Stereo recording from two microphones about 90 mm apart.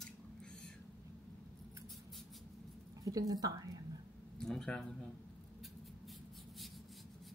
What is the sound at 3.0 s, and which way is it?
Speech, 40° right (ahead or behind).